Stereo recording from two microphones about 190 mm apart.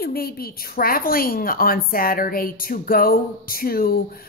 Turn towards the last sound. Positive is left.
turn(degrees=50)  # may be behind; listen again after turning